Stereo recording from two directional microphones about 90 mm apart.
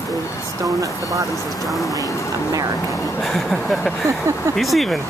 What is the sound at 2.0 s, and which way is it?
Speech, 35° left (ahead or behind).